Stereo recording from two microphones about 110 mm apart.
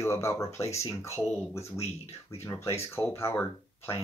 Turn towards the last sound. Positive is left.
turn(degrees=20)  # may be behind; listen again after turning